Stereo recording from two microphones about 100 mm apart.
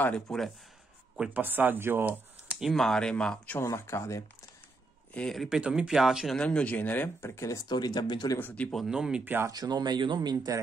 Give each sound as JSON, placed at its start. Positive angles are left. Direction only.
{"t": 0.3, "sound": "speech", "side_deg": 5}
{"t": 1.1, "sound": "speech", "side_deg": -10}
{"t": 2.5, "sound": "speech", "side_deg": 0}
{"t": 3.5, "sound": "speech", "side_deg": 25}
{"t": 5.1, "sound": "speech", "side_deg": 5}
{"t": 6.3, "sound": "speech", "side_deg": 10}
{"t": 8.4, "sound": "speech", "side_deg": 15}
{"t": 8.7, "sound": "speech", "side_deg": -5}
{"t": 9.2, "sound": "speech", "side_deg": -20}
{"t": 9.5, "sound": "speech", "side_deg": -40}